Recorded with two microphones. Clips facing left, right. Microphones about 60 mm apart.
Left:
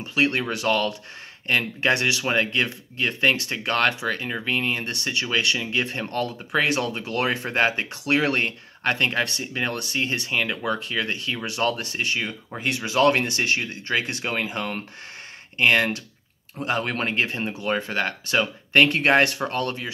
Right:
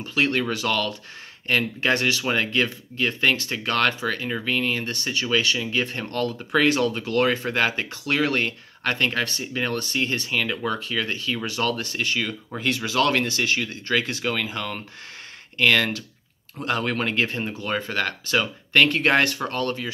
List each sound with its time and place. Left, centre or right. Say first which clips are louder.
0.0 s speech: even; left
17.4 s speech: left 1 dB; centre